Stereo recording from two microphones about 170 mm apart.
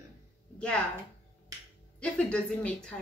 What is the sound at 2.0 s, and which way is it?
Speech, 5° left (ahead or behind).